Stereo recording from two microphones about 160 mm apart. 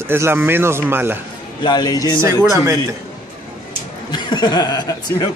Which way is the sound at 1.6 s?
25° left (ahead or behind).